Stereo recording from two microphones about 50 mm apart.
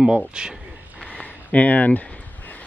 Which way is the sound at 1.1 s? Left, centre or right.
Left.